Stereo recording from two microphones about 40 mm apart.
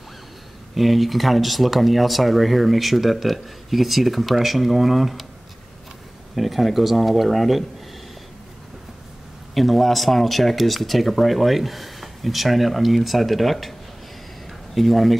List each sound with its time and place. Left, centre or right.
0.7 s speech: centre
6.3 s speech: centre
9.5 s speech: centre